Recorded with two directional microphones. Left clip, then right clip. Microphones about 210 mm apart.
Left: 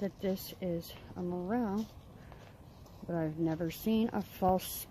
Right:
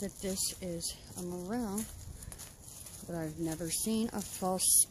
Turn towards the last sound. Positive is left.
turn(degrees=5)  # may be behind; listen again after turning